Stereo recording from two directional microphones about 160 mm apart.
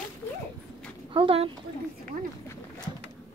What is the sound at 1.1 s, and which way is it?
Speech, 35° right (ahead or behind).